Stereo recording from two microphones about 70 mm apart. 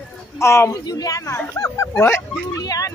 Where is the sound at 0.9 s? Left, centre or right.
Left.